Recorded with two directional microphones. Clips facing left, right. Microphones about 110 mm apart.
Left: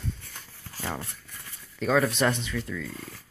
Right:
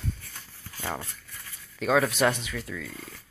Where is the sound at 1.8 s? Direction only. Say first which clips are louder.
Right 1 dB; 5° right (ahead or behind).